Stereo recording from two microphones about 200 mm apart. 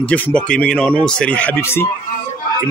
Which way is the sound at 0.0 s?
5° left (ahead or behind).